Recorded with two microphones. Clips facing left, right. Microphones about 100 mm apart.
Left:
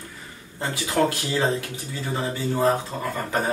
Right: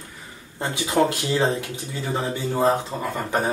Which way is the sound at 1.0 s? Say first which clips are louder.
Right 2 dB; 15° right (ahead or behind).